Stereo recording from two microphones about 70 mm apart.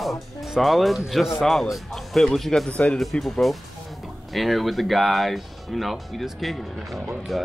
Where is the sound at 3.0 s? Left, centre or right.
Centre.